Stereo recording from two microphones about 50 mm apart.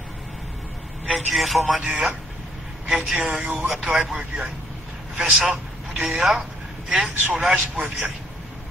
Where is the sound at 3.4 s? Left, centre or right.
Right.